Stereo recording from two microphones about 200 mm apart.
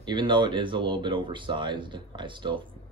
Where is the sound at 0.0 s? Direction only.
25° right (ahead or behind).